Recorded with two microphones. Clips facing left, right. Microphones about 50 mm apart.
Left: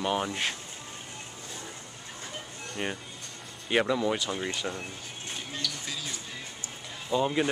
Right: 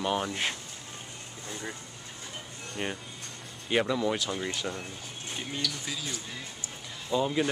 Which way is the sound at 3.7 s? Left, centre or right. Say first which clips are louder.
Left 1 dB; centre.